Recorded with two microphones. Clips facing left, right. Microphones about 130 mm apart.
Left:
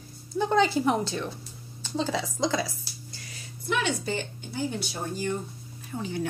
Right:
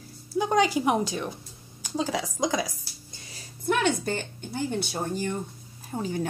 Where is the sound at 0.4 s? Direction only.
10° right (ahead or behind).